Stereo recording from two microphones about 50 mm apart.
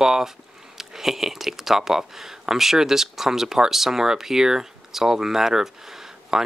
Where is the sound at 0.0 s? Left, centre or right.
Centre.